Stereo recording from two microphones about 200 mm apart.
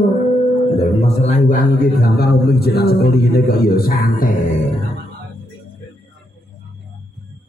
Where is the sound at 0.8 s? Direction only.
35° left (ahead or behind).